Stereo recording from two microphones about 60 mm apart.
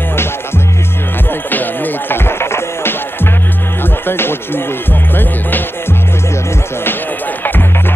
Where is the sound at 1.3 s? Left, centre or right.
Left.